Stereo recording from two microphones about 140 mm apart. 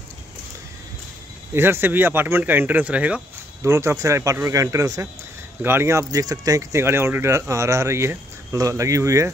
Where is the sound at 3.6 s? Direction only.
20° right (ahead or behind).